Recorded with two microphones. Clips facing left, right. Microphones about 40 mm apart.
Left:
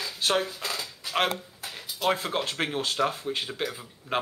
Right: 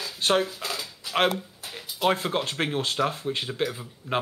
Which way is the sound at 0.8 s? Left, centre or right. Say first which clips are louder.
Right 3 dB; centre.